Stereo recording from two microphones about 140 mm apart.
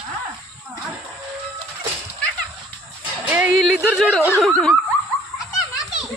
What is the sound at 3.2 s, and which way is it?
Music, 15° right (ahead or behind).